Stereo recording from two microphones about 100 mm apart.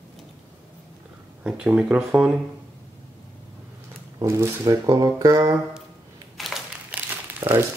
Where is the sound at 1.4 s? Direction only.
10° right (ahead or behind).